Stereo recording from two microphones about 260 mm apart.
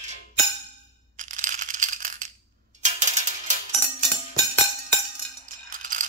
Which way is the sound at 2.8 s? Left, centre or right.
Right.